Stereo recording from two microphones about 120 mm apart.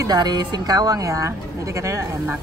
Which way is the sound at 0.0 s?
35° right (ahead or behind).